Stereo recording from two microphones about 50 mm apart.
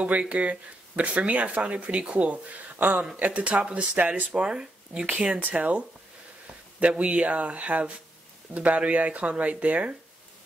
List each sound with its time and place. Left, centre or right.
0.0 s speech: right
5.0 s speech: right